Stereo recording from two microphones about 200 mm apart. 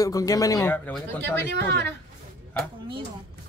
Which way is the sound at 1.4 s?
55° right (ahead or behind).